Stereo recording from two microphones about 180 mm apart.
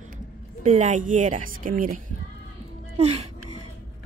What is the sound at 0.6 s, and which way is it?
A woman's voice, 40° right (ahead or behind).